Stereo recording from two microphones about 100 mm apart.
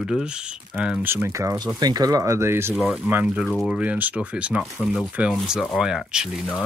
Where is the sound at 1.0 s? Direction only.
25° right (ahead or behind).